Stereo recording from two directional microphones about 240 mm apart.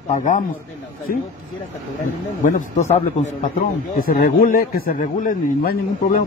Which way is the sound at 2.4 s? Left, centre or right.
Left.